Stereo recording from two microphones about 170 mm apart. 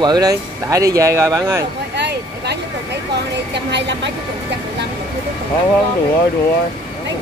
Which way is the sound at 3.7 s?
90° right.